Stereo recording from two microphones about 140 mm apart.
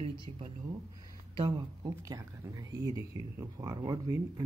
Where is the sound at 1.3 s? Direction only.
30° right (ahead or behind).